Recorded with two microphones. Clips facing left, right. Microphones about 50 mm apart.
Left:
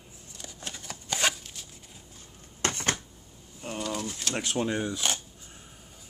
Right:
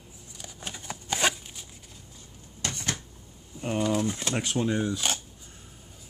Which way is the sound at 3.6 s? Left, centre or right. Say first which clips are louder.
Right 7 dB; right.